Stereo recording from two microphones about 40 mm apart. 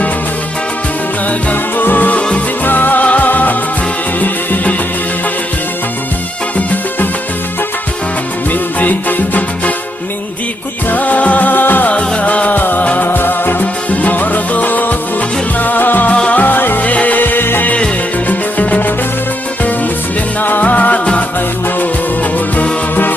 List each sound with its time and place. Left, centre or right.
1.5 s music: left
8.7 s music: left
10.9 s music: left
11.9 s music: left
16.1 s music: left
16.3 s music: left
17.2 s music: left
18.3 s music: left
20.6 s music: left